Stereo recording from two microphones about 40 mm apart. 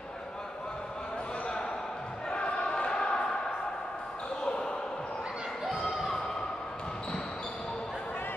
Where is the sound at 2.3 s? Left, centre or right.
Left.